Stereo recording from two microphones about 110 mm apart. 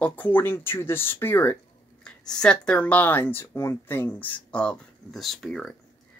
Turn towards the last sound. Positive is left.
turn(degrees=0)  # may be behind; listen again after turning